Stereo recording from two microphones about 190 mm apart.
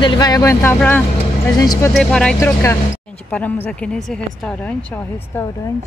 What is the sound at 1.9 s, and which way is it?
Speech, 5° left (ahead or behind).